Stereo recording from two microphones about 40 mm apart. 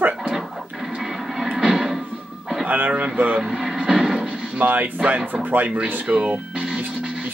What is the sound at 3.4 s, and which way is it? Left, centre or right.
Vehicle, centre.